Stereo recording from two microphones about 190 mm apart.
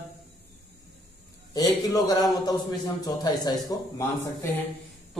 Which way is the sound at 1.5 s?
20° left (ahead or behind).